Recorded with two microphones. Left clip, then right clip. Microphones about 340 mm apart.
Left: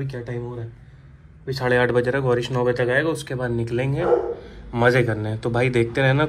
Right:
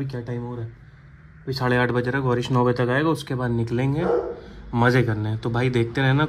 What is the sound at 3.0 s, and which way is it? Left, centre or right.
Speech, right.